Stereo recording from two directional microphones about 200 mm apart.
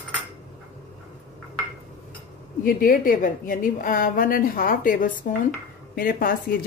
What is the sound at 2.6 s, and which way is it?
Speech, 45° left (ahead or behind).